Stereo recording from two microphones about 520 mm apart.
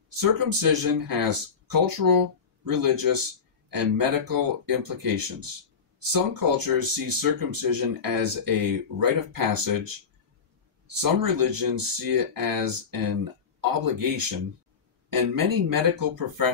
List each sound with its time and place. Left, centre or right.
0.4 s speech: right
11.0 s speech: right